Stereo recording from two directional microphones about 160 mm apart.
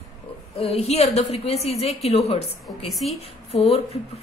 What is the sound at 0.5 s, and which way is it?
Speech, 40° left (ahead or behind).